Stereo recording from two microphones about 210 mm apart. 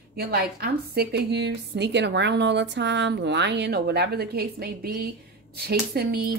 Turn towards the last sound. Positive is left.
turn(degrees=-50)  # may be behind; listen again after turning